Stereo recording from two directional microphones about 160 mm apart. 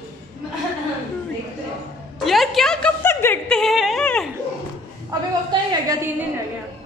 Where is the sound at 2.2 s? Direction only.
Centre (ahead or behind).